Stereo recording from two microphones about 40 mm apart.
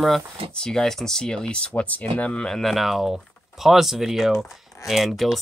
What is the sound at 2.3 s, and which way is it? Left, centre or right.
Speech, centre.